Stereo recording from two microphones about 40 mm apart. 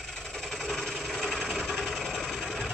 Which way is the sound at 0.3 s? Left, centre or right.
Centre.